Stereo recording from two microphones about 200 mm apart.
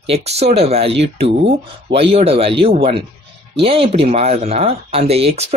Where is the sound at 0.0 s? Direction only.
30° right (ahead or behind).